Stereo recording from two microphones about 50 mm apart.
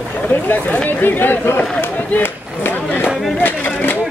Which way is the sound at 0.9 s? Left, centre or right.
Left.